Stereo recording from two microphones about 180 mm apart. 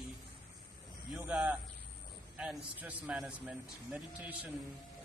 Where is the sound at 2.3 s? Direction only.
5° right (ahead or behind).